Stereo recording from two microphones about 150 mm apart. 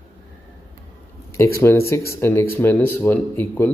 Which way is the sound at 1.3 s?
15° left (ahead or behind).